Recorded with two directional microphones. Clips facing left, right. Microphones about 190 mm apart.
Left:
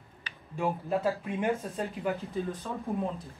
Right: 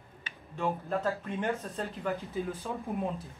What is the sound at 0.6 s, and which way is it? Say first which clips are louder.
Speech: left 2 dB; 10° left (ahead or behind).